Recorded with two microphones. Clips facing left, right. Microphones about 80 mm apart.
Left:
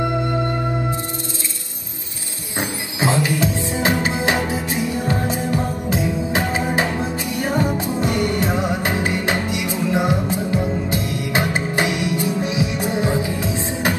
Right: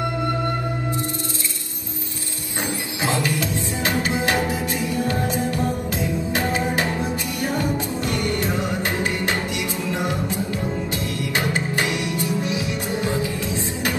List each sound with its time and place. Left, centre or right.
3.0 s music: left